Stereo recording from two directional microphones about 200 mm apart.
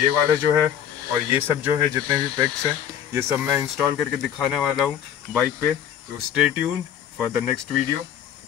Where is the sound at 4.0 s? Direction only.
Centre (ahead or behind).